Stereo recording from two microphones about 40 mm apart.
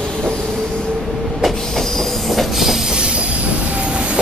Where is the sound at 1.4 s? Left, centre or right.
Centre.